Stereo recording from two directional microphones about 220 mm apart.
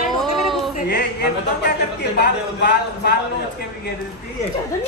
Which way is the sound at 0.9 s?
50° left (ahead or behind).